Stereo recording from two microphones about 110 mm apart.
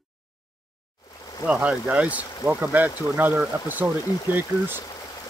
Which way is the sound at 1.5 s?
10° right (ahead or behind).